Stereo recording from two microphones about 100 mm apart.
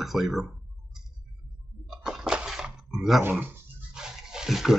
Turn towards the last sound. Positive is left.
turn(degrees=-5)  # may be behind; listen again after turning